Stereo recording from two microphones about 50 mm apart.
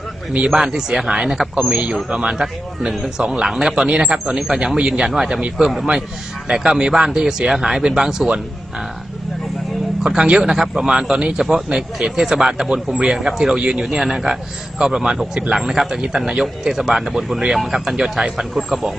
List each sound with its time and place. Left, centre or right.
0.5 s a man's voice: centre
5.1 s a man's voice: centre
10.0 s a man's voice: centre